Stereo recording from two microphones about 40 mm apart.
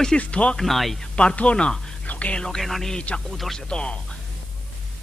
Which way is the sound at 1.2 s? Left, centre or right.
Left.